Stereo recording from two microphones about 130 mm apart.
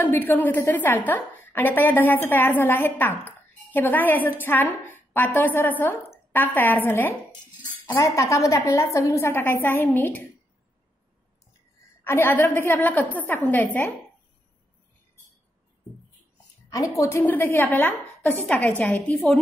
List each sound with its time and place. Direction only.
0.0 s a woman's voice: 15° left (ahead or behind)
12.0 s a woman's voice: 15° left (ahead or behind)
16.7 s a woman's voice: 25° left (ahead or behind)